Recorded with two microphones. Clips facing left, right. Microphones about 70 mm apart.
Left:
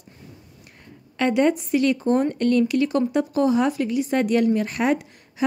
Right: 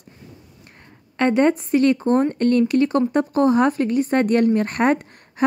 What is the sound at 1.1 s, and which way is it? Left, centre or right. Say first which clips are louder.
Speech: right 2 dB; right.